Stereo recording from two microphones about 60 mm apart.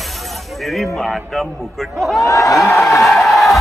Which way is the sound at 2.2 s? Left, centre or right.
Left.